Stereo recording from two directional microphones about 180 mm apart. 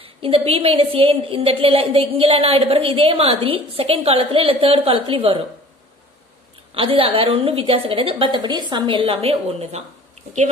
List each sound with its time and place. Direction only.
0.0 s a woman's voice: 30° right (ahead or behind)
6.7 s a woman's voice: 30° right (ahead or behind)